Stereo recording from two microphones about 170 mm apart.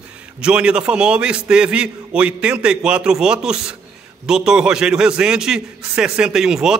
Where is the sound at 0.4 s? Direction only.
5° right (ahead or behind).